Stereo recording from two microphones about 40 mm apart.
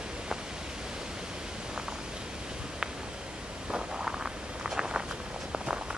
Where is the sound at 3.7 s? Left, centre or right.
Centre.